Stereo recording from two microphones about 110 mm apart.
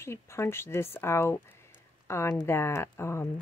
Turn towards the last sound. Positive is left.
turn(degrees=25)  # may be behind; listen again after turning